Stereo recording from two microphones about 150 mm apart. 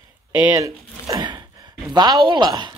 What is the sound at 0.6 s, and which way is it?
Speech, 25° right (ahead or behind).